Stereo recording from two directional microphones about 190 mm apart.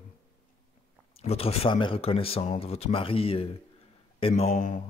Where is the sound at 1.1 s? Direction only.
35° left (ahead or behind).